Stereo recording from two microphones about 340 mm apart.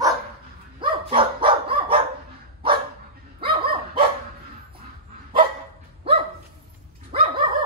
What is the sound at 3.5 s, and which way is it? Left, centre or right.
Dog, right.